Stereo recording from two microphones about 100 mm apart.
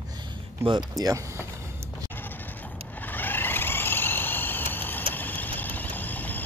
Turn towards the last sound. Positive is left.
turn(degrees=15)  # may be behind; listen again after turning